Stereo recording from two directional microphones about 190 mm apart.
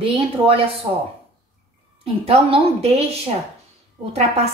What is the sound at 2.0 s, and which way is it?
A woman's voice, 30° right (ahead or behind).